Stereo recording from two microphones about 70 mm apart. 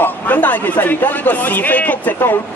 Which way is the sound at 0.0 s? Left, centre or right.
Left.